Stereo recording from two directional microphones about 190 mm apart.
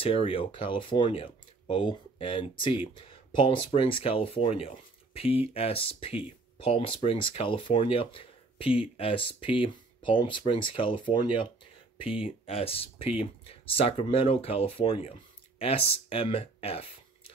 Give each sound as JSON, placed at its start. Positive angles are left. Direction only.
{"t": 0.0, "sound": "speech", "side_deg": 30}